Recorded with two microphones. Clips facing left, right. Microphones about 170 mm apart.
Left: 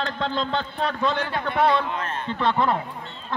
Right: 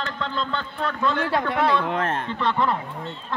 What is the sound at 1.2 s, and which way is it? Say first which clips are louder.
Speech: even; 75° right (ahead or behind).